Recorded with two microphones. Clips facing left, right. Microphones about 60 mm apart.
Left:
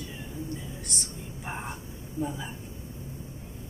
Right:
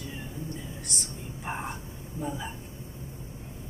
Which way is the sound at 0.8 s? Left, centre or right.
Centre.